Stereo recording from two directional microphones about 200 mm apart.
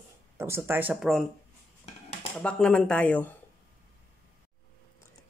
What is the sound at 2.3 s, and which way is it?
Speech, 5° left (ahead or behind).